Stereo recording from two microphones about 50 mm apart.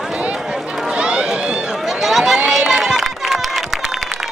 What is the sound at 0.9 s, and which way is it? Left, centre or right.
Chatter, right.